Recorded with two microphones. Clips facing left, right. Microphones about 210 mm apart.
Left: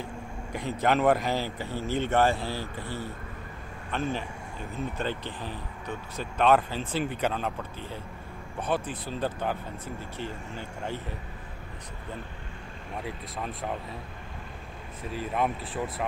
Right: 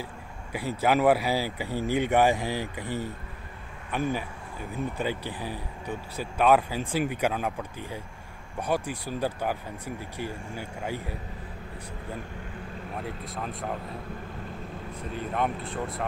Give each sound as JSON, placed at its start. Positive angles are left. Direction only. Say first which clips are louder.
{"t": 0.5, "sound": "speech", "louder": "right 1 dB", "side_deg": -10}
{"t": 13.0, "sound": "speech", "louder": "left 1 dB", "side_deg": 0}
{"t": 15.1, "sound": "speech", "louder": "even", "side_deg": 0}